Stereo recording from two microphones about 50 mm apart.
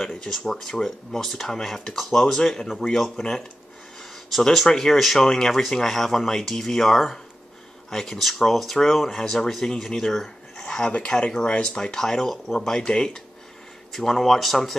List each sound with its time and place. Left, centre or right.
0.1 s speech: centre
10.9 s speech: left
13.9 s speech: centre